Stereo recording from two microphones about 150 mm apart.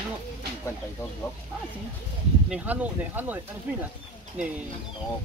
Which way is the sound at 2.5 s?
10° right (ahead or behind).